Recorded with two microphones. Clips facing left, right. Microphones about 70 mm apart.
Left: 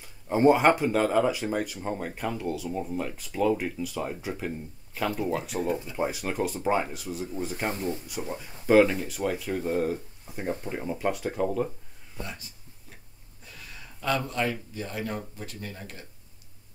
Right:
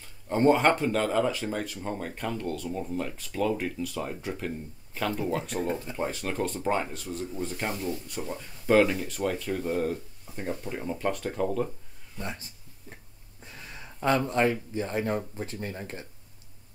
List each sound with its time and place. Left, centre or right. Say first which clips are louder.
0.0 s speech: left 2 dB; centre
7.7 s speech: left 1 dB; left
8.1 s speech: left 1 dB; centre
12.2 s speech: right 2 dB; right
13.6 s speech: right 6 dB; right